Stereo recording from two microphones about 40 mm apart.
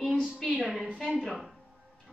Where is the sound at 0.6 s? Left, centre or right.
Centre.